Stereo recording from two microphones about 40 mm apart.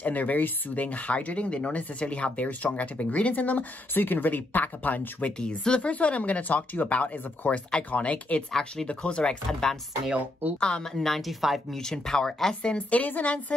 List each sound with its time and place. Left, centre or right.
0.0 s speech: left
5.4 s speech: left
5.8 s speech: left
8.5 s speech: centre
8.8 s speech: left
9.5 s speech: centre
10.4 s speech: right
10.8 s a woman's voice: centre
11.7 s speech: centre
12.9 s speech: left